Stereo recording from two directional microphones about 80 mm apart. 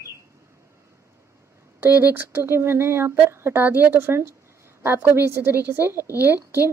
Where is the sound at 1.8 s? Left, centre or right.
Right.